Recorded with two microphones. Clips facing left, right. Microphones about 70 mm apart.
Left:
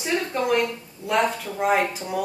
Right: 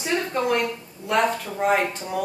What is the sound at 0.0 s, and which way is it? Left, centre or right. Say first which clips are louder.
A woman's voice: even; centre.